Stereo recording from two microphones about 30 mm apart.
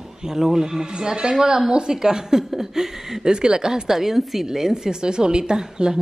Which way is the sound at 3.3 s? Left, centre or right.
Right.